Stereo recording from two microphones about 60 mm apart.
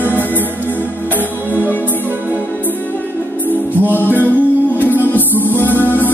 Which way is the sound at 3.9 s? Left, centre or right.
Left.